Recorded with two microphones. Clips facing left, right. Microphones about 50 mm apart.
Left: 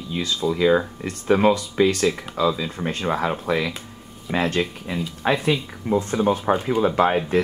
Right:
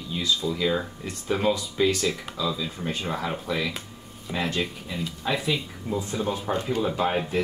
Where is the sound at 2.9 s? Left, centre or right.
Left.